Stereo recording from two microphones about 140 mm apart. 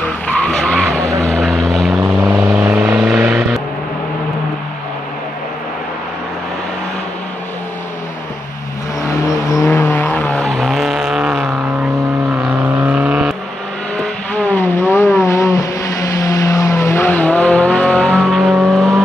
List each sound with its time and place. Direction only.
0.0 s vehicle: 10° left (ahead or behind)
1.0 s vehicle: 20° right (ahead or behind)
1.3 s vehicle: centre (ahead or behind)
2.1 s vehicle: 10° right (ahead or behind)
9.5 s vehicle: 20° left (ahead or behind); by 11.5 s 5° right (ahead or behind)
12.8 s vehicle: 10° right (ahead or behind)
13.9 s vehicle: 10° left (ahead or behind)